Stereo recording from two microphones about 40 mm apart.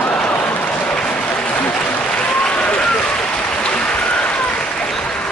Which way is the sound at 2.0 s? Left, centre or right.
Left.